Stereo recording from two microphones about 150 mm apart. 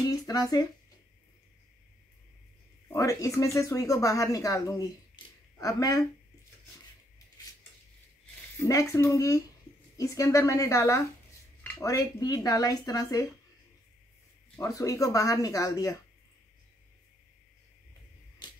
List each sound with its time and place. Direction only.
0.1 s speech: 25° left (ahead or behind)
2.9 s speech: 20° left (ahead or behind)
8.6 s speech: 20° left (ahead or behind)
14.6 s speech: 20° left (ahead or behind)